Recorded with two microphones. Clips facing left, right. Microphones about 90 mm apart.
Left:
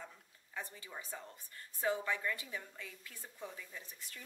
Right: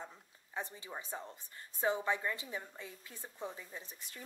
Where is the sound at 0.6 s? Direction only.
25° right (ahead or behind).